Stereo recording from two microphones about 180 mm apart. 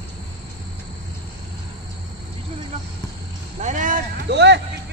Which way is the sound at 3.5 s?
45° right (ahead or behind).